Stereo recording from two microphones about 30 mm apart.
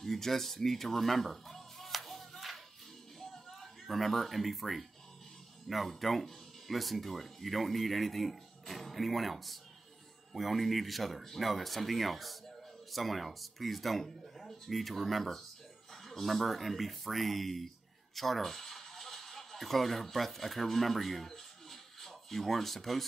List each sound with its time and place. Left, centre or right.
0.0 s music: centre
3.2 s a sound: centre
5.7 s speech: centre